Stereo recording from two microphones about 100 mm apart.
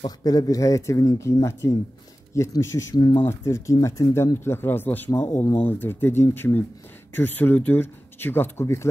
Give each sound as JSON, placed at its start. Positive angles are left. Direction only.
{"t": 0.2, "sound": "speech", "side_deg": 40}
{"t": 3.0, "sound": "speech", "side_deg": 55}
{"t": 3.3, "sound": "speech", "side_deg": 30}